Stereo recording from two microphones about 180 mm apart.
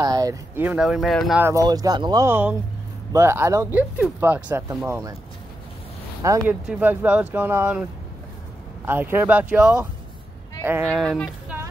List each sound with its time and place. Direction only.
0.0 s speech: 20° right (ahead or behind); by 1.4 s centre (ahead or behind)
1.4 s speech: 20° right (ahead or behind)
6.2 s speech: 15° right (ahead or behind)
6.6 s speech: 5° right (ahead or behind)
8.8 s speech: 10° right (ahead or behind)